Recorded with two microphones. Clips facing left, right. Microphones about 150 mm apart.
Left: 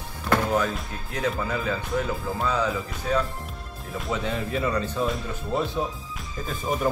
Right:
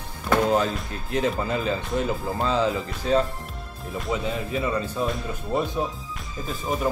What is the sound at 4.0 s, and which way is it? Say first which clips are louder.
Speech: right 1 dB; centre (ahead or behind).